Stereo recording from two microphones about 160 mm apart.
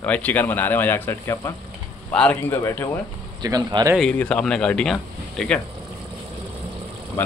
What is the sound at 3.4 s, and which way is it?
Speech, 25° right (ahead or behind).